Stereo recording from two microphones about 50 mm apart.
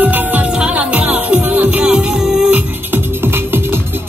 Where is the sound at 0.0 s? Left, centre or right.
Right.